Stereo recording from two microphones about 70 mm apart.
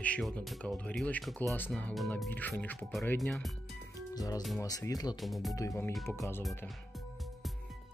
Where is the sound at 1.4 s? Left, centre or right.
Left.